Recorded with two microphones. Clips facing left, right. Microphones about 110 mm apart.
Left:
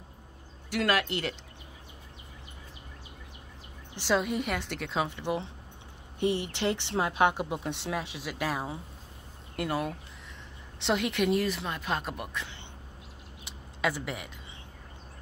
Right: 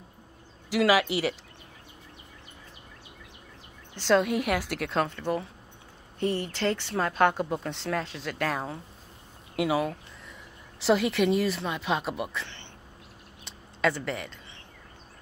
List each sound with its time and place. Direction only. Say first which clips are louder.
0.7 s speech: right 5 dB; 5° right (ahead or behind)
3.9 s a woman's voice: right 5 dB; 10° left (ahead or behind)
4.2 s speech: right 4 dB; centre (ahead or behind)
5.0 s speech: right 2 dB; 15° left (ahead or behind); by 12.4 s 5° right (ahead or behind)
13.4 s a sound: right 4 dB; 10° left (ahead or behind)